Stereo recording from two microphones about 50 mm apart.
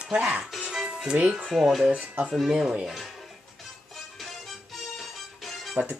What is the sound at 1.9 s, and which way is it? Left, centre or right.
Speech, right.